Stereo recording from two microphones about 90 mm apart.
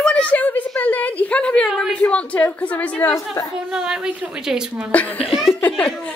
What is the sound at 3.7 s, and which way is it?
Speech, 10° right (ahead or behind).